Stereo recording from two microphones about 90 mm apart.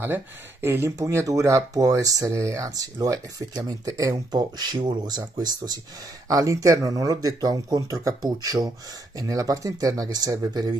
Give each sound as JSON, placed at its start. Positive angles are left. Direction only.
{"t": 0.0, "sound": "speech", "side_deg": -25}
{"t": 6.2, "sound": "speech", "side_deg": -40}